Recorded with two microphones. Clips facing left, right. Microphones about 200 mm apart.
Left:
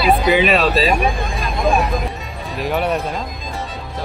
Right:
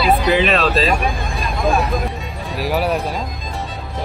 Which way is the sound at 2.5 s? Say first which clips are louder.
Even; 5° right (ahead or behind).